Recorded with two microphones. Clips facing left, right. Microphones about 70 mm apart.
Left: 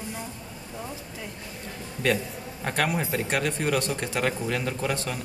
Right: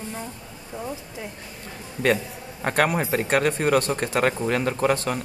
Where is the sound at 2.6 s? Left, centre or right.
Right.